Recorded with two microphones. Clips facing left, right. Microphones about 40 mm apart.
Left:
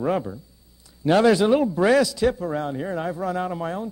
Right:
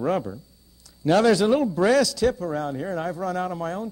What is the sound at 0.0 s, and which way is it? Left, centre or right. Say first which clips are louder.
A man's voice: left 1 dB; centre.